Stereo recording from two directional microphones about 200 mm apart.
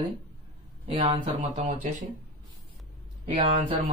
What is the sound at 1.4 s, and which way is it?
Speech, 40° right (ahead or behind).